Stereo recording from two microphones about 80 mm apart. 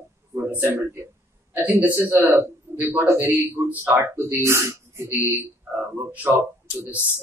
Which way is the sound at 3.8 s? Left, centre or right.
Right.